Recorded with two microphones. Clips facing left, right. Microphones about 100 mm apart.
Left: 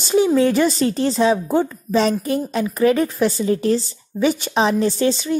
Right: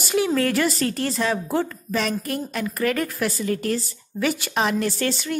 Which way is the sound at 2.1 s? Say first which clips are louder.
Left 6 dB; 5° left (ahead or behind).